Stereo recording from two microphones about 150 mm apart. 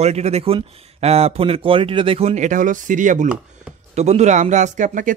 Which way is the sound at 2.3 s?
55° right (ahead or behind).